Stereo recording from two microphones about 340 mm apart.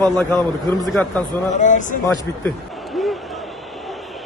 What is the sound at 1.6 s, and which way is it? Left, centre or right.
Speech, left.